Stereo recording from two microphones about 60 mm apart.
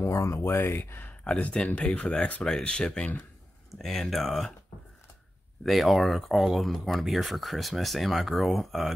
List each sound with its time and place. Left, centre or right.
0.0 s speech: left
1.2 s speech: centre
3.7 s speech: centre
5.7 s speech: centre